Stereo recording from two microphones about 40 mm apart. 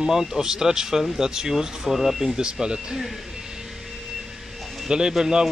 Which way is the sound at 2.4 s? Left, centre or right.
Centre.